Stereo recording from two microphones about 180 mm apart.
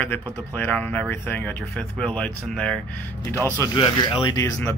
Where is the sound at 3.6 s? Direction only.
25° left (ahead or behind).